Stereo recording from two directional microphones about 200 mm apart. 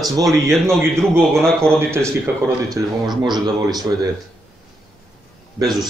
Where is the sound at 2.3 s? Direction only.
10° right (ahead or behind).